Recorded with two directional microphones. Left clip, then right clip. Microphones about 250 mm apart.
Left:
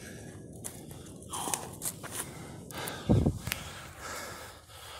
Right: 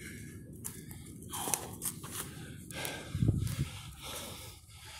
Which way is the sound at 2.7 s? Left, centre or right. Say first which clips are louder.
Left 1 dB; centre.